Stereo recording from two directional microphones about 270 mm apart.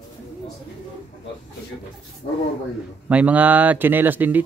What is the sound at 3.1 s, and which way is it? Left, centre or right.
Speech, centre.